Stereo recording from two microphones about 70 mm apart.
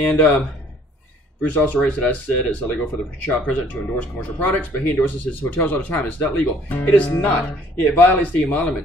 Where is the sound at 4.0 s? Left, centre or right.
Left.